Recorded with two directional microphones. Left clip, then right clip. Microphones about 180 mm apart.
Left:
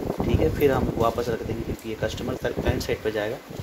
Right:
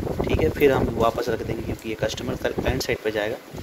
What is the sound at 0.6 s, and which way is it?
Speech, 5° right (ahead or behind).